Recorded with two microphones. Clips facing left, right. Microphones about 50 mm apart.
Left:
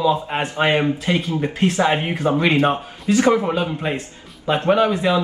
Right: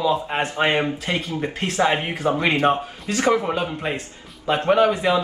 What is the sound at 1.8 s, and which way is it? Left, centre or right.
Speech, left.